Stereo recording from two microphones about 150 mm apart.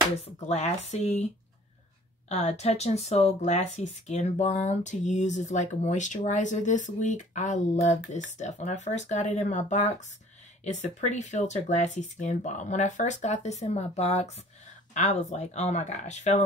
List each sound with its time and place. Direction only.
0.5 s speech: 50° left (ahead or behind)